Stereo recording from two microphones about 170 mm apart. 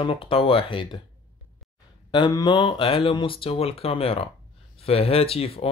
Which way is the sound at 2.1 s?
25° left (ahead or behind).